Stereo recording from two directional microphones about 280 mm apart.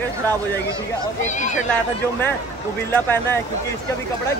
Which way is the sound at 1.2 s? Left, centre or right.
Left.